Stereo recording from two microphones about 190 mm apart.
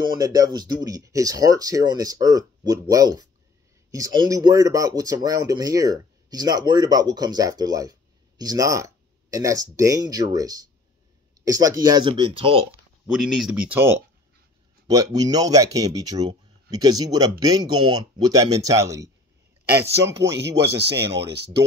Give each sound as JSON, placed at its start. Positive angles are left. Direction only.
{"t": 0.2, "sound": "speech", "side_deg": -20}
{"t": 13.0, "sound": "speech", "side_deg": -5}
{"t": 15.1, "sound": "speech", "side_deg": -20}
{"t": 20.6, "sound": "speech", "side_deg": -60}